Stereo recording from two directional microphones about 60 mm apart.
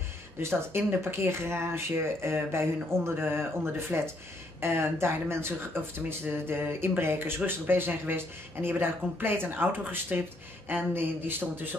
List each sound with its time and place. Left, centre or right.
0.4 s speech: right